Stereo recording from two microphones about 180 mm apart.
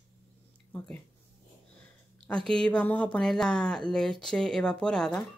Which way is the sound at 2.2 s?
5° left (ahead or behind).